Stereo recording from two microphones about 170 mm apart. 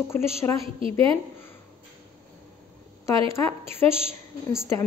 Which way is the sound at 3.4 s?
15° left (ahead or behind).